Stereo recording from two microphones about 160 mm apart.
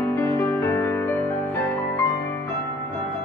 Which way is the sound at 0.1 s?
15° left (ahead or behind).